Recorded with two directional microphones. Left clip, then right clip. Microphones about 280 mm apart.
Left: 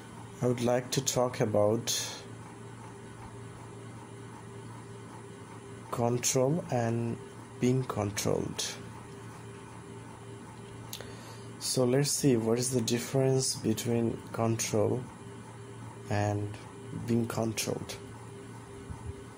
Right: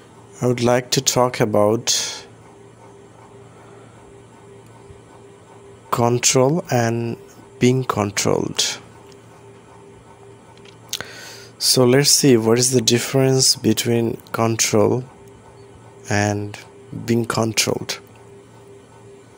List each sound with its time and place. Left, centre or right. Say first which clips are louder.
0.4 s speech: right 11 dB; right
5.9 s speech: right 13 dB; right
10.9 s a sound: right 17 dB; right
11.5 s speech: right 13 dB; right
16.1 s speech: right 12 dB; right